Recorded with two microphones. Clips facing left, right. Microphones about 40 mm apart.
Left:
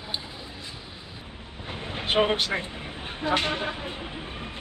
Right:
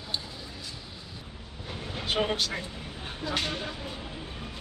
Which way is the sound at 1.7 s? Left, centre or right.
Left.